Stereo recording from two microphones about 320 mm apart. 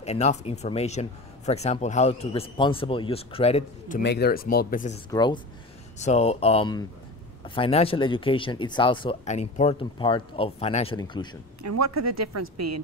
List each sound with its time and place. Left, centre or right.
0.0 s speech: left
4.0 s speech: left
5.1 s speech: centre
11.6 s speech: right